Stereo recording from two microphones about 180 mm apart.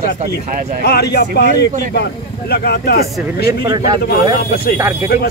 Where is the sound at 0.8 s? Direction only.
65° left (ahead or behind).